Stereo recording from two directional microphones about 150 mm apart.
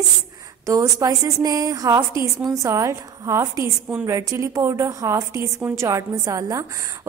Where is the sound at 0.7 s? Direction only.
20° right (ahead or behind).